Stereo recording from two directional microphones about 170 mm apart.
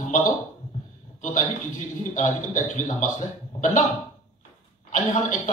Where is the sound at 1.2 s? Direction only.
45° left (ahead or behind).